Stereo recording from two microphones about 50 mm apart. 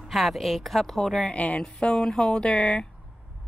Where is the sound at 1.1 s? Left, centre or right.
Left.